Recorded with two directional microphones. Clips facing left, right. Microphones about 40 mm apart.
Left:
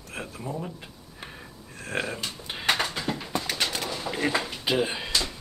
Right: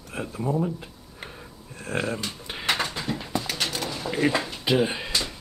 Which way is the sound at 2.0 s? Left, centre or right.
Centre.